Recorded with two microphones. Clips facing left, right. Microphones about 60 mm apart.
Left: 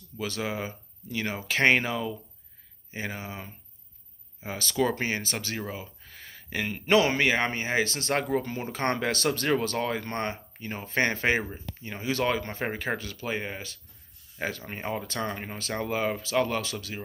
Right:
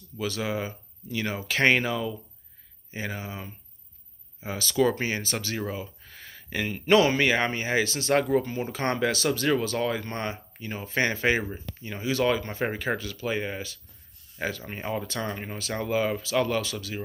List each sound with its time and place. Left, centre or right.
0.2 s speech: left
4.5 s speech: left
5.6 s a sound: centre
6.9 s speech: left
8.4 s speech: left
8.6 s speech: left